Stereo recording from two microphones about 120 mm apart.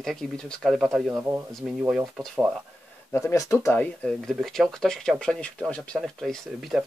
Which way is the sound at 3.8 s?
10° left (ahead or behind).